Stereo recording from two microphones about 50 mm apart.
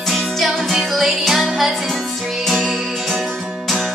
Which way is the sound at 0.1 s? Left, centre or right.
Centre.